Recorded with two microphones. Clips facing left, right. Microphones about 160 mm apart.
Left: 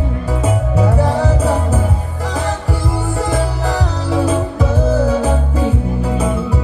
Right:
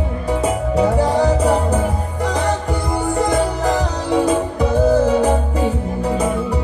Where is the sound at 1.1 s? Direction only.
15° right (ahead or behind).